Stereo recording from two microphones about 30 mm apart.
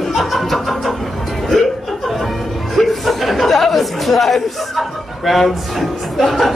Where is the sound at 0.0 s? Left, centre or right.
Centre.